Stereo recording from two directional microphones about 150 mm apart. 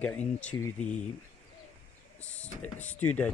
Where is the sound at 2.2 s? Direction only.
10° left (ahead or behind).